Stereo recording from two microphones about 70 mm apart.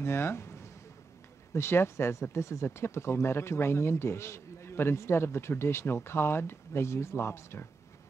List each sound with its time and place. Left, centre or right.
0.0 s speech: left